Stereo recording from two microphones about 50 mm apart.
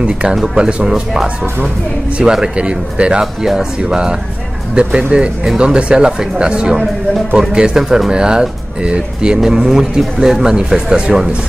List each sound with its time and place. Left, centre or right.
0.0 s speech: centre
2.3 s speech: centre
7.8 s speech: centre
8.1 s speech: centre